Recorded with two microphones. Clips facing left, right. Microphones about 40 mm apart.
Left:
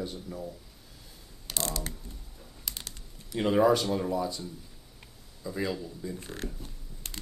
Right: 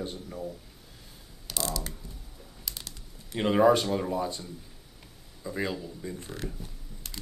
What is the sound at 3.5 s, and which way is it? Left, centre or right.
Speech, right.